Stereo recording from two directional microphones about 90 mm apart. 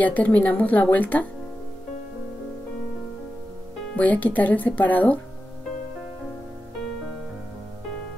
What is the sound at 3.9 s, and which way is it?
Speech, 15° left (ahead or behind).